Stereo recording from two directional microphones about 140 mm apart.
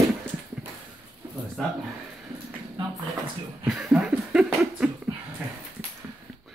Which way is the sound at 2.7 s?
35° right (ahead or behind).